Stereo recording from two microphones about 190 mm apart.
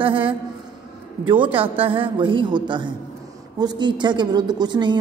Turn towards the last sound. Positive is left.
turn(degrees=-25)  # may be behind; listen again after turning